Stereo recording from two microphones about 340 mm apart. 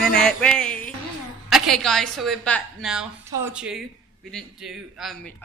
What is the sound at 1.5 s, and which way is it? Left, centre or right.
A man's voice, centre.